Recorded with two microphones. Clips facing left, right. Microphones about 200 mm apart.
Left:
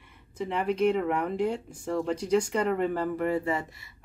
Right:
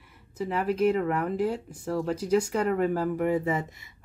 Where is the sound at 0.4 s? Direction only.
5° right (ahead or behind).